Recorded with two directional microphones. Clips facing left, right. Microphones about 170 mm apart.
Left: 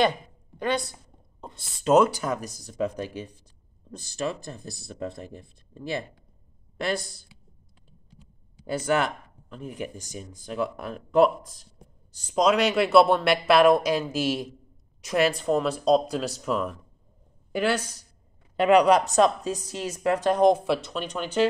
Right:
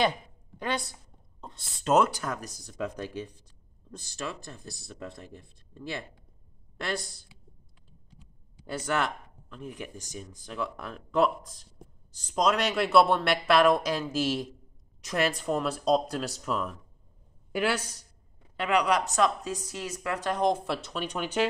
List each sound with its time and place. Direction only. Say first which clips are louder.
0.6 s a woman's voice: left 5 dB; 5° right (ahead or behind)
4.3 s speech: left 6 dB; 15° left (ahead or behind)
8.8 s a woman's voice: left 5 dB; 10° left (ahead or behind)
18.6 s speech: left 8 dB; 25° left (ahead or behind)
20.2 s speech: left 7 dB; 15° left (ahead or behind); by 21.5 s 10° right (ahead or behind)